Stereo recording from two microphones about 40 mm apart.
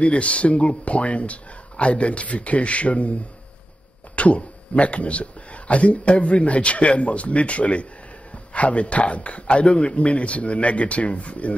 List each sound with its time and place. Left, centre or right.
0.0 s speech: left